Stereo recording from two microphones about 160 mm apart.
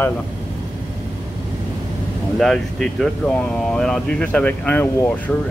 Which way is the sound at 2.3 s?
5° left (ahead or behind).